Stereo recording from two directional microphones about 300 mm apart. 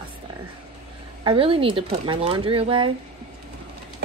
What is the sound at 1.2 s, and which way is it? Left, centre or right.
Speech, centre.